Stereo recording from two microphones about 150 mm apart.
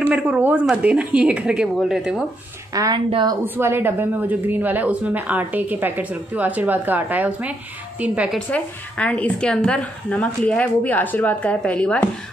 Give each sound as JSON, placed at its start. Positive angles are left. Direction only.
{"t": 0.1, "sound": "a woman's voice", "side_deg": -10}
{"t": 2.7, "sound": "a woman's voice", "side_deg": -25}
{"t": 3.4, "sound": "a woman's voice", "side_deg": -15}
{"t": 8.5, "sound": "a woman's voice", "side_deg": 10}